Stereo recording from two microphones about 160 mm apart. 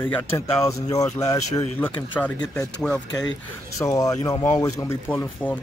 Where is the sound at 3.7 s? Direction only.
20° left (ahead or behind).